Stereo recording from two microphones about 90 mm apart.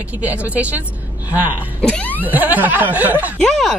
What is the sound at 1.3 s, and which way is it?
Snicker, 20° right (ahead or behind).